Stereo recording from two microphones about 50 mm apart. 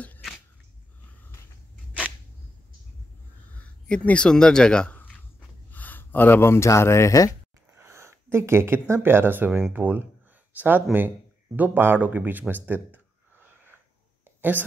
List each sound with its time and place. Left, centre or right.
3.9 s speech: left
5.7 s speech: left
7.7 s speech: right
9.5 s speech: right
9.8 s speech: right
11.8 s a sound: right